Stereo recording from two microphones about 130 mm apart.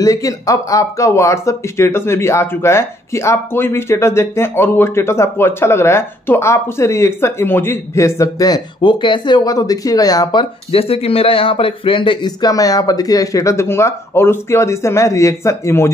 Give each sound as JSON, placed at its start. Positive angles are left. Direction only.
{"t": 0.0, "sound": "speech", "side_deg": 25}
{"t": 10.7, "sound": "speech", "side_deg": 50}